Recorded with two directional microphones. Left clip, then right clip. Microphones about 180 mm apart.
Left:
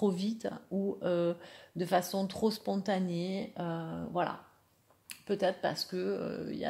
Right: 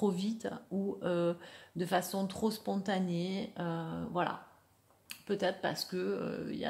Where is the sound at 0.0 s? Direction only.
15° left (ahead or behind).